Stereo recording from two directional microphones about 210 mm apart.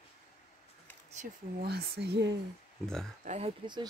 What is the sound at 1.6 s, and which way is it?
Speech, 50° right (ahead or behind).